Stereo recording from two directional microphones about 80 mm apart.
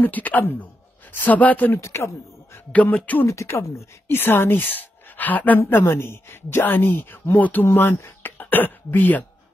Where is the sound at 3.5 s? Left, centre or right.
Left.